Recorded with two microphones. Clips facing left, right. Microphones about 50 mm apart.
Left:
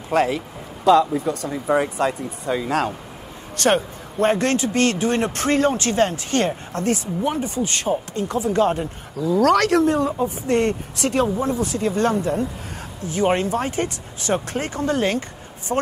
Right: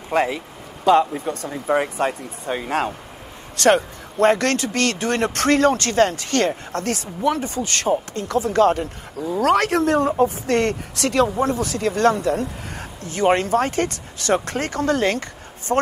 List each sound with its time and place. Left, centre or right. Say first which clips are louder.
0.1 s speech: left 1 dB; right
1.8 s speech: left 1 dB; right
10.4 s speech: even; right
15.7 s speech: right 3 dB; centre